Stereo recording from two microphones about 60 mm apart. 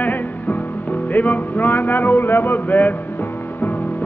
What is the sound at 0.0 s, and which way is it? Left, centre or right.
Music, left.